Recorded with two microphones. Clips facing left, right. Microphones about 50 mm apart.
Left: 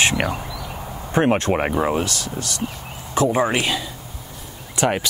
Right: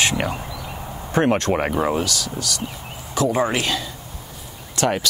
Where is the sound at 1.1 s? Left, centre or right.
Centre.